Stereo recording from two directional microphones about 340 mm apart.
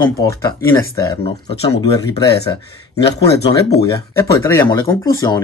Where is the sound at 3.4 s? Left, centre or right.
Left.